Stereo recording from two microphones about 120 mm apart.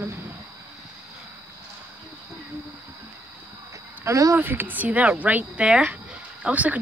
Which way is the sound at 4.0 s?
25° right (ahead or behind).